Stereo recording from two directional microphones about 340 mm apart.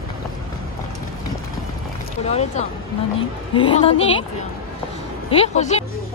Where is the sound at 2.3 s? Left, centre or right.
Centre.